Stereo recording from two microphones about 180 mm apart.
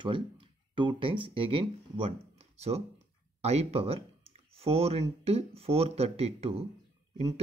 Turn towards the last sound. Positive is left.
turn(degrees=-35)  # may be behind; listen again after turning